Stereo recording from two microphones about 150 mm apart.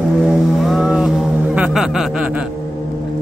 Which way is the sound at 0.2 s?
Centre (ahead or behind).